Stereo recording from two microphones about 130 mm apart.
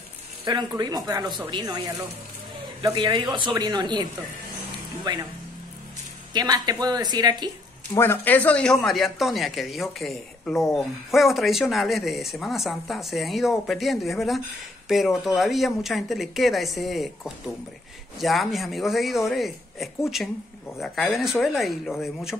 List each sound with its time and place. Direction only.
0.5 s speech: 35° right (ahead or behind)
6.3 s speech: 30° right (ahead or behind)
7.9 s speech: 20° left (ahead or behind); by 22.4 s 5° right (ahead or behind)